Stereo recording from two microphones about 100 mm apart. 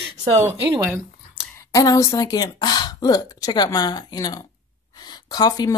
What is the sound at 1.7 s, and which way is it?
Speech, 35° left (ahead or behind).